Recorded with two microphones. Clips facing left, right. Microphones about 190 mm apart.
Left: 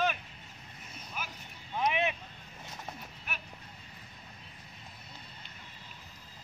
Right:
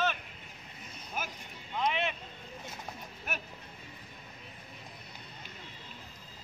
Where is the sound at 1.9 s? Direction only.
15° left (ahead or behind).